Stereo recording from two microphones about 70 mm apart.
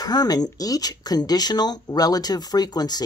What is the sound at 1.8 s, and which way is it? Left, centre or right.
Speech, left.